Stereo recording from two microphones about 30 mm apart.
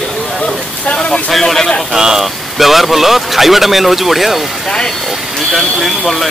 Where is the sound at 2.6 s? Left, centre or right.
Centre.